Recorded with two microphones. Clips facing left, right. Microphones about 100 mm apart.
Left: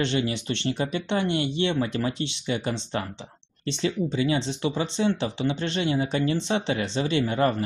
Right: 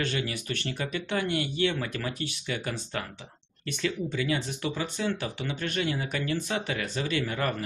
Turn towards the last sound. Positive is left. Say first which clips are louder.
# left 6 dB
turn(degrees=25)  # may be behind; listen again after turning